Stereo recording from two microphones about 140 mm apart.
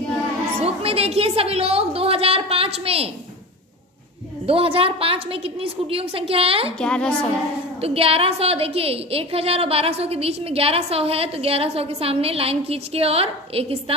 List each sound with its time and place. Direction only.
0.6 s a woman's voice: 45° right (ahead or behind)
4.5 s a woman's voice: 40° right (ahead or behind)
6.8 s a woman's voice: 5° left (ahead or behind)
7.8 s a woman's voice: 45° right (ahead or behind)